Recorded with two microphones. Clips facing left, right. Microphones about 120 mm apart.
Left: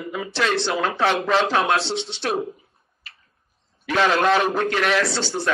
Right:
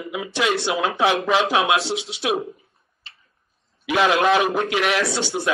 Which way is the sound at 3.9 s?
5° right (ahead or behind).